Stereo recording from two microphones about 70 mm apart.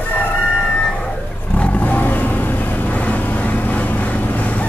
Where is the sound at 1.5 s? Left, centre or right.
Left.